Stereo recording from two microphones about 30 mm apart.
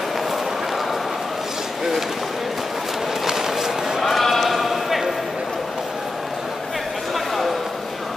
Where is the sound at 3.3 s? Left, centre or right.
Centre.